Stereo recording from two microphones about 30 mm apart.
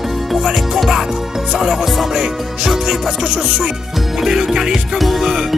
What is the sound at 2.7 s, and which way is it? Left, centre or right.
Music, centre.